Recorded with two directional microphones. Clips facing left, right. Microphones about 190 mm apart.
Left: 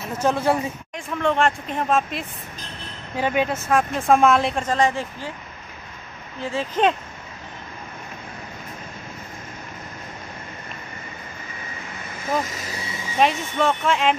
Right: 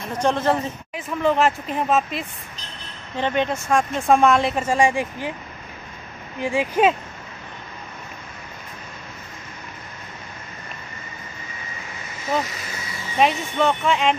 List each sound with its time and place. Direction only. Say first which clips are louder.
0.0 s speech: even; 5° left (ahead or behind)
0.9 s speech: right 2 dB; 5° right (ahead or behind)
6.4 s speech: right 2 dB; 15° right (ahead or behind)
13.2 s speech: right 1 dB; centre (ahead or behind)